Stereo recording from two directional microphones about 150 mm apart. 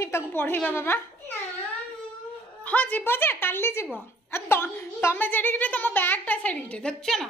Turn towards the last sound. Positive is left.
turn(degrees=5)  # may be behind; listen again after turning